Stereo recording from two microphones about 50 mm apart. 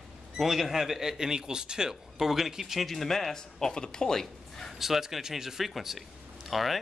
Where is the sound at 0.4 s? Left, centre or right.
Centre.